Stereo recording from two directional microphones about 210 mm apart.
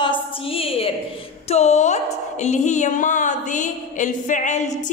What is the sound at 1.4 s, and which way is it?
A woman's voice, 30° left (ahead or behind).